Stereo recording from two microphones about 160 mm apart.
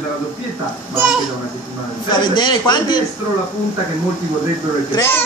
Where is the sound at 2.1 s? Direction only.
30° left (ahead or behind).